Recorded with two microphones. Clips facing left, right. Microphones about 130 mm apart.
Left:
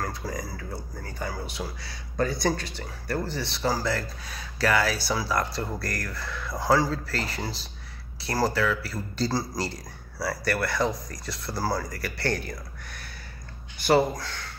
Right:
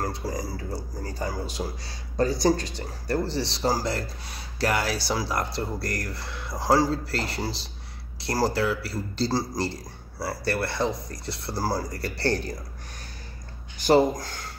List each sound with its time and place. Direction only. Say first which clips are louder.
0.0 s a man's voice: right 2 dB; 30° right (ahead or behind)
13.8 s speech: right 2 dB; 40° right (ahead or behind)